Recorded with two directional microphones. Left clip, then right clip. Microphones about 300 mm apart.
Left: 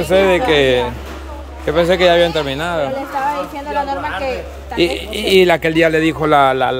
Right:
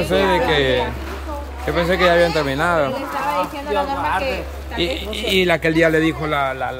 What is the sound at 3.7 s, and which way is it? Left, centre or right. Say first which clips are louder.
A man's voice: left 1 dB; centre.